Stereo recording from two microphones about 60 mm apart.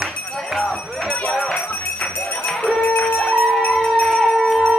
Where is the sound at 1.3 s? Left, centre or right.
Centre.